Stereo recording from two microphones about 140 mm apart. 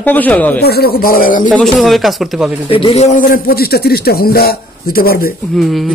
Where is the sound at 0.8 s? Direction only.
90° left.